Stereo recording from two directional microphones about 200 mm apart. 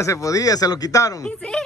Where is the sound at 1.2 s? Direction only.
5° left (ahead or behind).